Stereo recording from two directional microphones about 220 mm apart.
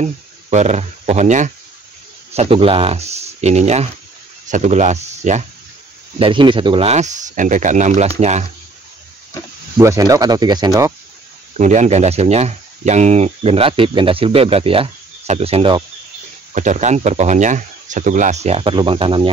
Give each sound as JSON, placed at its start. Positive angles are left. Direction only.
{"t": 0.0, "sound": "speech", "side_deg": -30}
{"t": 9.8, "sound": "speech", "side_deg": -15}
{"t": 11.5, "sound": "speech", "side_deg": -35}